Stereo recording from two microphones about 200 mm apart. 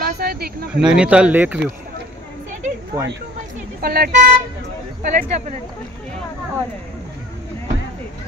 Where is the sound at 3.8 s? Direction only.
50° right (ahead or behind).